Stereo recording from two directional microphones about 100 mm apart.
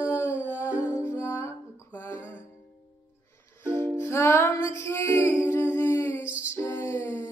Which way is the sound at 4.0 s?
25° left (ahead or behind).